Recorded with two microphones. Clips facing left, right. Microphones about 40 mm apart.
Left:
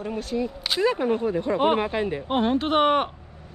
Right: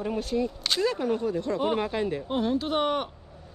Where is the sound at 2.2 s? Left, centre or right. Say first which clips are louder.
Left 4 dB; left.